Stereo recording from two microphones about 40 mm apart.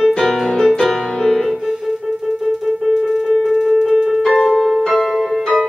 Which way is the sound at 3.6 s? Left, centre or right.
Centre.